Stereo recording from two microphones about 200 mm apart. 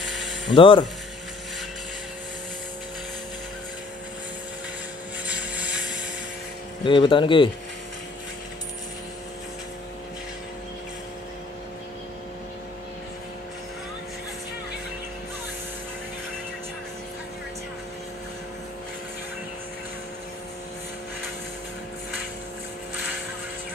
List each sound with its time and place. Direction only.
0.6 s speech: 25° left (ahead or behind)
5.2 s vehicle: 5° right (ahead or behind)
6.8 s speech: 25° left (ahead or behind)